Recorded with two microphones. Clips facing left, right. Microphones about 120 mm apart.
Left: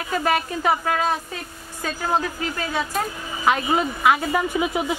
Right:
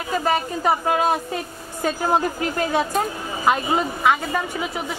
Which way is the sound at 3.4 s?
Centre (ahead or behind).